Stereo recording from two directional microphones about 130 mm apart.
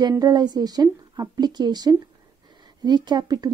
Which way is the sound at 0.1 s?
30° right (ahead or behind).